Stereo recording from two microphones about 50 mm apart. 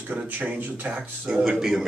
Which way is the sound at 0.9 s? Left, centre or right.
Centre.